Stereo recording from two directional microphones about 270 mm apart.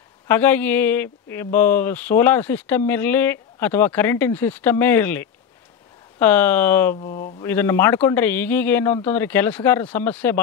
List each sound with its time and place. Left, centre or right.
0.3 s speech: centre
7.0 s speech: left
7.4 s speech: centre